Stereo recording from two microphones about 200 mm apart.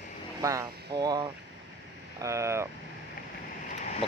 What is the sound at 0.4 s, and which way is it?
Speech, 15° right (ahead or behind).